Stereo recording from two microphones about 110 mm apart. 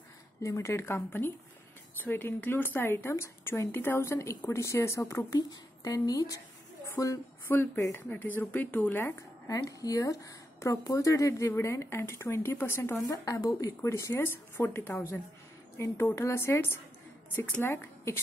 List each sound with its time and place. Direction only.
0.4 s a woman's voice: 30° left (ahead or behind)
9.5 s a woman's voice: 30° left (ahead or behind)
13.0 s a woman's voice: 35° left (ahead or behind)